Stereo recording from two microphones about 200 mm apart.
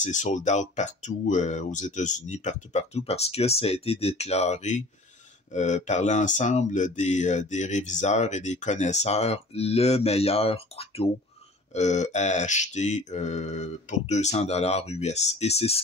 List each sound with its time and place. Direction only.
0.0 s speech: 35° left (ahead or behind)